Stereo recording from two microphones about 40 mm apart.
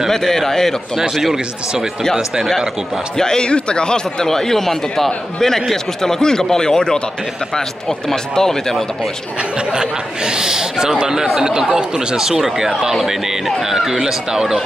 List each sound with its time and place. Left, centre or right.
0.1 s speech: centre
3.2 s speech: centre
8.1 s speech: centre
9.7 s speech: centre